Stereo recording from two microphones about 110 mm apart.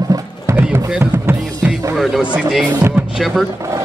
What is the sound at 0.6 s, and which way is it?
Music, 10° right (ahead or behind).